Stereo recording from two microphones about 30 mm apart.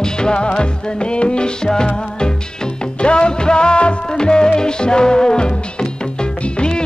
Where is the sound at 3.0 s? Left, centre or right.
Left.